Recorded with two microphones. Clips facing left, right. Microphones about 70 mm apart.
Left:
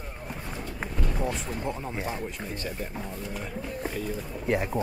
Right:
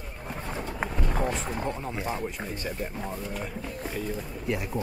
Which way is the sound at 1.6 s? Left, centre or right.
Centre.